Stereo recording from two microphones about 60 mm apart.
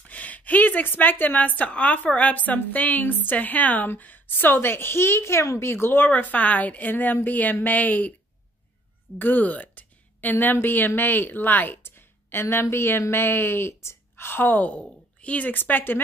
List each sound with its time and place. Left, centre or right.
0.1 s a woman's voice: left
5.7 s a woman's voice: left
9.2 s a sound: left
10.3 s a woman's voice: left